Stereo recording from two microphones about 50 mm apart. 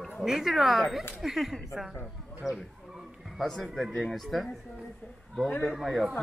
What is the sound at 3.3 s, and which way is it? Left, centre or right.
A man's voice, centre.